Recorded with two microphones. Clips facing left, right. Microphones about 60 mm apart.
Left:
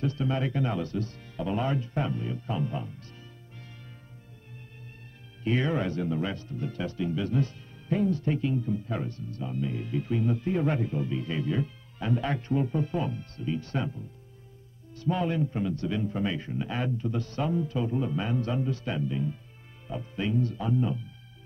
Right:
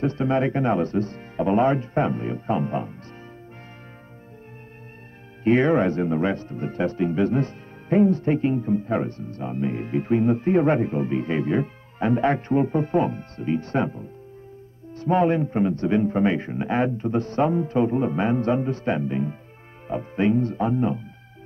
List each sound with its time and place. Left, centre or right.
0.0 s speech: right
5.4 s speech: right